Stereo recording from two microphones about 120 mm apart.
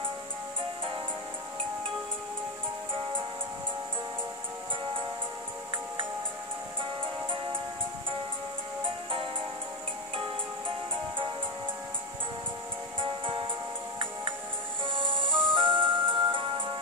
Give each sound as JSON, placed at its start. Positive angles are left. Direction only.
{"t": 13.0, "sound": "music", "side_deg": -40}
{"t": 15.0, "sound": "music", "side_deg": -45}